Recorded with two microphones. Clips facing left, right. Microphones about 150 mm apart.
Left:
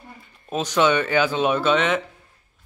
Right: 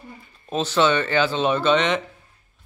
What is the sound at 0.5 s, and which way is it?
Speech, 10° left (ahead or behind).